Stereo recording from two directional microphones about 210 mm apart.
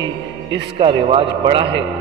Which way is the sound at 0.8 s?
25° right (ahead or behind).